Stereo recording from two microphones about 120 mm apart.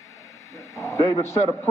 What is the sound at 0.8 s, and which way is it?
Speech, 25° left (ahead or behind).